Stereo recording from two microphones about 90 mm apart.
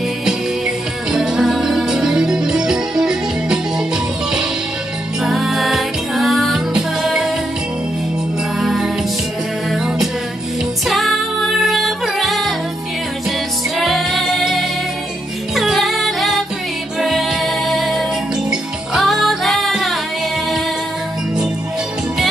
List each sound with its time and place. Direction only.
0.2 s music: 5° right (ahead or behind)
5.2 s music: 5° right (ahead or behind)
8.5 s music: 5° right (ahead or behind)
13.7 s music: centre (ahead or behind)